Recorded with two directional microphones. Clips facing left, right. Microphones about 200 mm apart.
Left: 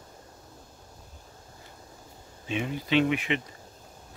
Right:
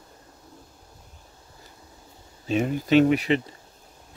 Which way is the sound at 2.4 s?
40° right (ahead or behind).